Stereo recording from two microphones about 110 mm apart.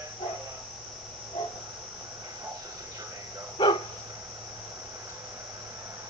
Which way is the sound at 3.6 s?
45° left (ahead or behind).